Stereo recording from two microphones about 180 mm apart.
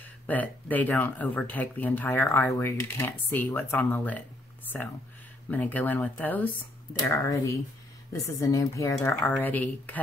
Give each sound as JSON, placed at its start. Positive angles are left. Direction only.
{"t": 0.3, "sound": "speech", "side_deg": 10}
{"t": 5.5, "sound": "speech", "side_deg": 10}